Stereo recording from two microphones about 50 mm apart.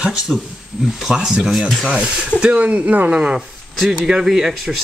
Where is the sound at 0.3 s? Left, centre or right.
Centre.